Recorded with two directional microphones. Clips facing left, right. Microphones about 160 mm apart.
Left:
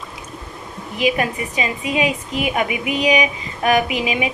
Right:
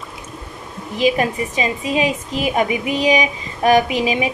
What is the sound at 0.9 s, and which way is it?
Speech, 35° right (ahead or behind).